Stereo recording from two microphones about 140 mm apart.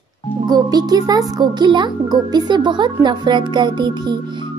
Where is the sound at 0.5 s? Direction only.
30° right (ahead or behind).